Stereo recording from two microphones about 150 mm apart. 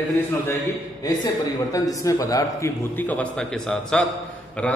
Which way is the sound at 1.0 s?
25° left (ahead or behind).